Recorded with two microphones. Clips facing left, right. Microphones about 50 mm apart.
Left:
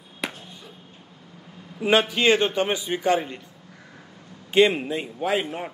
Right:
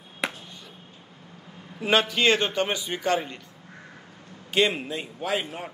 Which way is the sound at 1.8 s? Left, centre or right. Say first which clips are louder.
Left 2 dB; centre.